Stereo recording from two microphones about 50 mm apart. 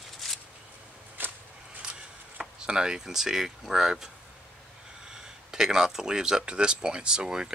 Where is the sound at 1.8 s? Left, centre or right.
Centre.